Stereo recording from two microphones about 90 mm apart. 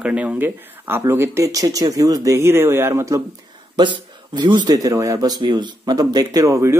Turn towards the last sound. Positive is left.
turn(degrees=-35)  # may be behind; listen again after turning